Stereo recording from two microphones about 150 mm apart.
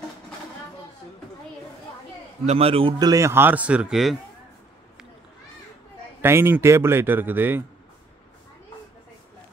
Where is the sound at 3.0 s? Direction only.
20° right (ahead or behind); by 4.1 s 5° right (ahead or behind).